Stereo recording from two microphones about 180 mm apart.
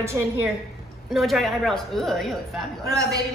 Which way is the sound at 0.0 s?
15° right (ahead or behind).